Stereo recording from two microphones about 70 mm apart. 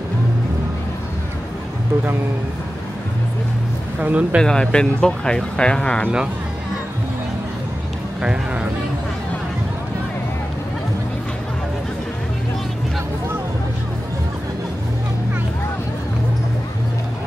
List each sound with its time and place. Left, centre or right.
4.0 s speech: right
4.4 s speech: centre